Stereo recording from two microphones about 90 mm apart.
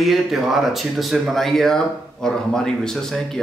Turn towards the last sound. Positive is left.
turn(degrees=5)  # may be behind; listen again after turning